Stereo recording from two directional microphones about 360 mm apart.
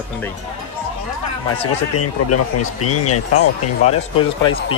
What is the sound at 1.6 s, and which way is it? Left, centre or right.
Speech, left.